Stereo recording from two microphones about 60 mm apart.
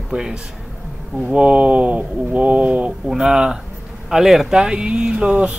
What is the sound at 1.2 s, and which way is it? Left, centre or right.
Speech, right.